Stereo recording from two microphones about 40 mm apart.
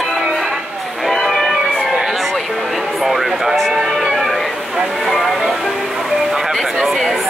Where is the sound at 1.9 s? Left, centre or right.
Centre.